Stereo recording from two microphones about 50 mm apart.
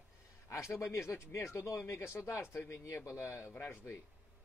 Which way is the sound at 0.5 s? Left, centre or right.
Left.